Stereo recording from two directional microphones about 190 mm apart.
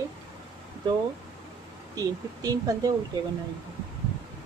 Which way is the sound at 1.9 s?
20° right (ahead or behind).